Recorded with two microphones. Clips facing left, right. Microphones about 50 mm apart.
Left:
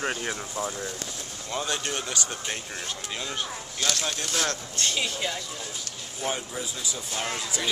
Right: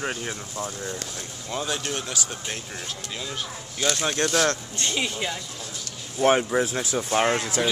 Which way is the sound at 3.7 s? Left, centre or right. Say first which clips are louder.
Right 5 dB; right.